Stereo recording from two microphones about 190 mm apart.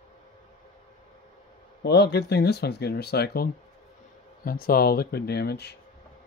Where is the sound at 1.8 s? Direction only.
60° left (ahead or behind).